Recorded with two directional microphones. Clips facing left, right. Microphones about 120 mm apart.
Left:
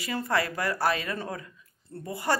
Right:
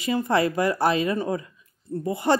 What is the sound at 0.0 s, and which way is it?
Speech, 20° right (ahead or behind).